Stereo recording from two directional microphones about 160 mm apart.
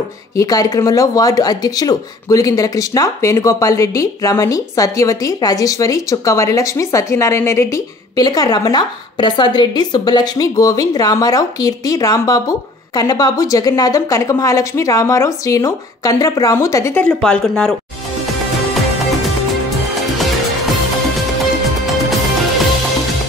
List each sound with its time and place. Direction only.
0.4 s speech: 20° left (ahead or behind)
17.0 s speech: 5° left (ahead or behind)